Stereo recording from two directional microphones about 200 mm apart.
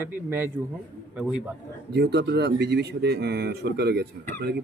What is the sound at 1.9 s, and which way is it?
Speech, 55° right (ahead or behind).